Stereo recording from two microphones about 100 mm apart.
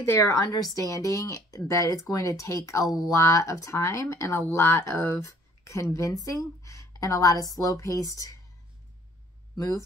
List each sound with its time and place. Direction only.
0.0 s speech: 30° left (ahead or behind)